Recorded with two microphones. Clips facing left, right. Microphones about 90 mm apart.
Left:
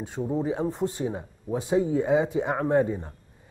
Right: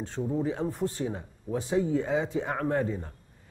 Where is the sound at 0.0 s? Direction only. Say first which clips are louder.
Left 2 dB; 10° left (ahead or behind).